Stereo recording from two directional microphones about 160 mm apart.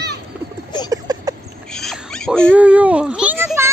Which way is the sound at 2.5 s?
10° right (ahead or behind).